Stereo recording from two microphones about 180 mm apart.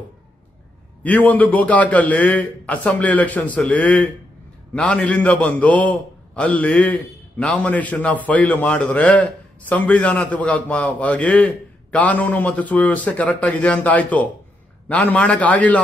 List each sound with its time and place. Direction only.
1.0 s a man's voice: 10° left (ahead or behind)